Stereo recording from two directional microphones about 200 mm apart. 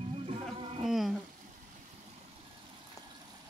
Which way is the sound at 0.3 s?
30° right (ahead or behind).